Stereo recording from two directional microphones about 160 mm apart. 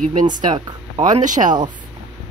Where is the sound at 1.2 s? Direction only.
55° right (ahead or behind).